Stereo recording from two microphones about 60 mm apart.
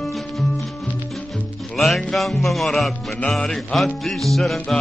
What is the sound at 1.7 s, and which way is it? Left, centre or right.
Music, centre.